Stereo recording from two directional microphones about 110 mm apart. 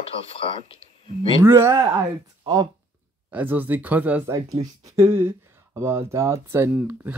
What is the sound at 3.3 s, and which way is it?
Speech, 15° right (ahead or behind).